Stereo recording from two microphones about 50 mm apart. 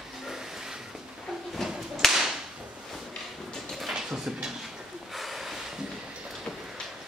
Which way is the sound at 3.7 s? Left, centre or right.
Centre.